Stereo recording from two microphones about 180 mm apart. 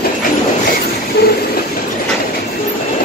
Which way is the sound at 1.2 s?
60° left (ahead or behind).